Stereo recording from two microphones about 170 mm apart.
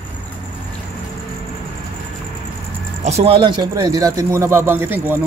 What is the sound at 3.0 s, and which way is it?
A man's voice, 35° right (ahead or behind).